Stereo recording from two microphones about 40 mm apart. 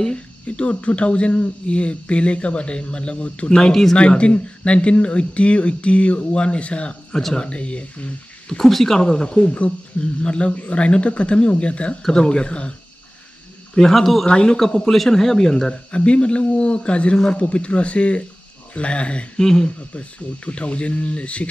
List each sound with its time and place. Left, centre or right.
0.0 s speech: left
8.5 s speech: centre
9.0 s speech: left
13.7 s speech: centre
14.2 s speech: left
14.9 s speech: centre; by 19.2 s left
19.3 s speech: centre
19.9 s speech: left